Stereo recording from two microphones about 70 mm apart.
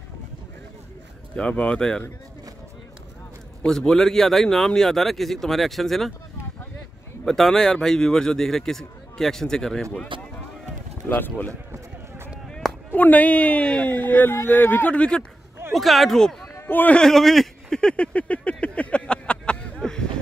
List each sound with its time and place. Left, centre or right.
1.3 s a man's voice: centre
3.6 s speech: centre
7.2 s a man's voice: centre
11.1 s a woman's voice: left
12.4 s chop: centre
12.9 s a woman's voice: left
15.7 s speech: centre
16.5 s a sound: left
16.9 s a sound: centre